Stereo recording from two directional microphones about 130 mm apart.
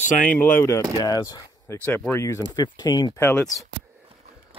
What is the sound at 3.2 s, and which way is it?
Speech, 20° left (ahead or behind).